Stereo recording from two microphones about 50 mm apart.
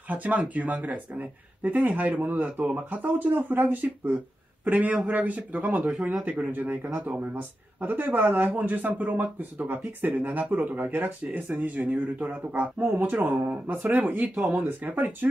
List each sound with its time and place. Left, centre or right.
0.1 s speech: right
11.5 s speech: right
12.8 s speech: right
13.1 s speech: right